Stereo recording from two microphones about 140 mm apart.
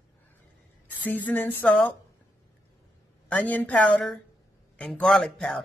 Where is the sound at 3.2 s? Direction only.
10° left (ahead or behind).